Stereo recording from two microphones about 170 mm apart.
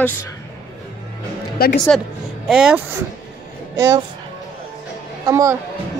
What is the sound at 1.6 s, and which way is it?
Speech, 65° left (ahead or behind).